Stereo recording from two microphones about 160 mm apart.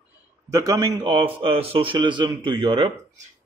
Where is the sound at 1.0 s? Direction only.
35° right (ahead or behind).